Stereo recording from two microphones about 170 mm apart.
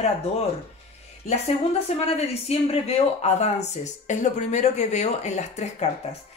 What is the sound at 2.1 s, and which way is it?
Speech, 35° left (ahead or behind).